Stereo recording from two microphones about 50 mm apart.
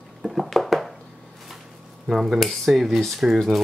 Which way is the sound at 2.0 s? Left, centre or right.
Centre.